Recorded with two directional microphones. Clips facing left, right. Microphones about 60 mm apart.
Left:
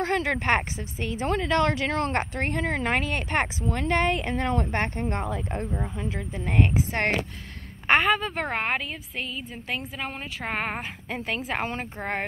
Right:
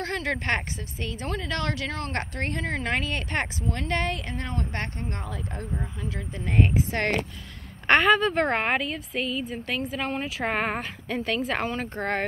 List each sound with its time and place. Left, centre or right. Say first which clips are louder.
0.0 s speech: left 4 dB; left
2.1 s speech: left 3 dB; left
7.8 s a woman's voice: right 2 dB; centre
10.8 s speech: right 2 dB; centre
11.6 s speech: right 1 dB; left
12.0 s speech: right 3 dB; centre